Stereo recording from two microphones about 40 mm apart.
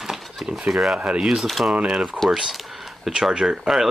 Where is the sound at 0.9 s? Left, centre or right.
Right.